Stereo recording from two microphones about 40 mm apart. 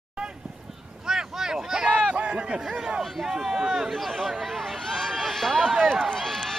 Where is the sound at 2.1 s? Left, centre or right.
Right.